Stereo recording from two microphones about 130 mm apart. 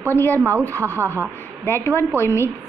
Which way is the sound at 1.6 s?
20° left (ahead or behind).